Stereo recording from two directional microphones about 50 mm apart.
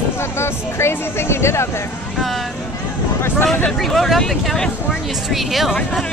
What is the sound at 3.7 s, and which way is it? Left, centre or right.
Speech, centre.